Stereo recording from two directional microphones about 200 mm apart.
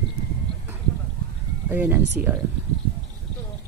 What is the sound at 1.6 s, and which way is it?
Speech, 10° right (ahead or behind).